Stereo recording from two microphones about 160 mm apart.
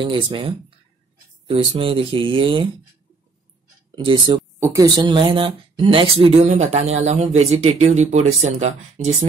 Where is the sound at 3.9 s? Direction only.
30° right (ahead or behind); by 8.7 s 45° right (ahead or behind).